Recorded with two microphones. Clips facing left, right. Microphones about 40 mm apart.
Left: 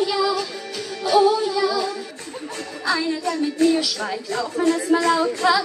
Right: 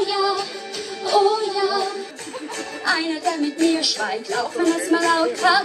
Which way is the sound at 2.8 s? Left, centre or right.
Right.